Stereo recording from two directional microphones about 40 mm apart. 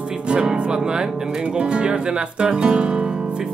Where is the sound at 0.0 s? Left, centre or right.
Right.